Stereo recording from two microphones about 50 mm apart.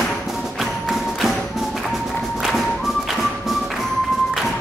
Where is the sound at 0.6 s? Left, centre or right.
Centre.